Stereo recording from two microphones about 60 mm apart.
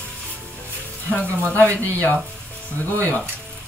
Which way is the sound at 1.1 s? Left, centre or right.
Left.